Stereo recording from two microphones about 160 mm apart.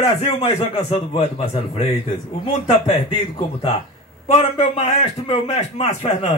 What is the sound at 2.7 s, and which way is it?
A man's voice, 35° left (ahead or behind).